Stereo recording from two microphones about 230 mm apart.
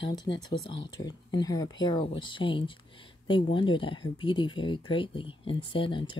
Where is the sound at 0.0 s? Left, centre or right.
Centre.